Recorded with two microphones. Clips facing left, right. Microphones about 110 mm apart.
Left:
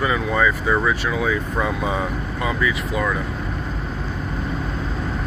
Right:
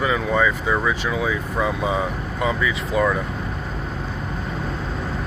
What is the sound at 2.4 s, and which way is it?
Speech, 25° right (ahead or behind).